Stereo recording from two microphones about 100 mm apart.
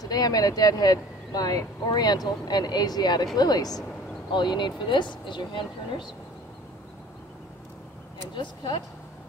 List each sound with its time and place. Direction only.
0.0 s speech: 40° left (ahead or behind)
8.4 s speech: 55° left (ahead or behind)